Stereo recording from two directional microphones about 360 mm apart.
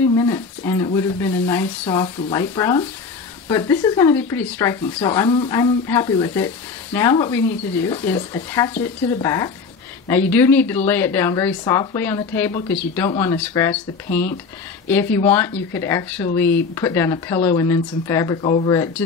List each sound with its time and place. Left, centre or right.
0.2 s speech: centre
15.1 s speech: centre